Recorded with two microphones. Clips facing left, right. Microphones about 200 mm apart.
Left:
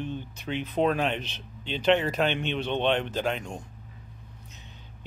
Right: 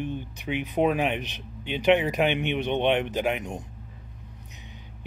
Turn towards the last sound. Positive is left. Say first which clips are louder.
# right 2 dB
turn(degrees=-15)  # may be behind; listen again after turning